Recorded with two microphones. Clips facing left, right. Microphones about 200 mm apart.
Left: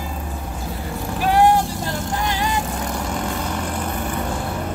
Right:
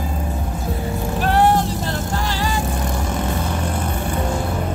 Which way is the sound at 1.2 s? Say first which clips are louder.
Left 1 dB; 10° left (ahead or behind).